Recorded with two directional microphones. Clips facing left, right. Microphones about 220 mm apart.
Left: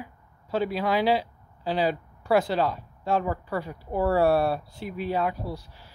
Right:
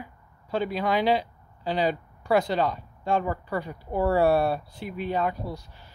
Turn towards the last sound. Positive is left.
turn(degrees=5)  # may be behind; listen again after turning